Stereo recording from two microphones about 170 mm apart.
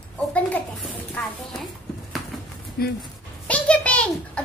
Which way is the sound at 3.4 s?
10° left (ahead or behind).